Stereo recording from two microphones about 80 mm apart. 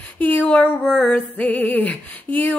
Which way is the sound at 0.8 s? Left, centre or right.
Centre.